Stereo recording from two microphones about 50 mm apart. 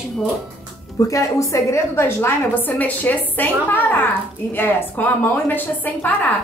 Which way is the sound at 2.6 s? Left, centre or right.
Left.